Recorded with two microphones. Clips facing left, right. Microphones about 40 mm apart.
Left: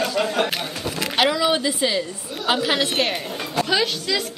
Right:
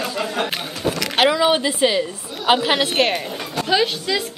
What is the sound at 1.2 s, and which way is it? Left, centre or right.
A woman's voice, right.